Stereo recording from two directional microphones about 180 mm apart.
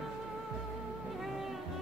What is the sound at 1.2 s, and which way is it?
Music, centre (ahead or behind).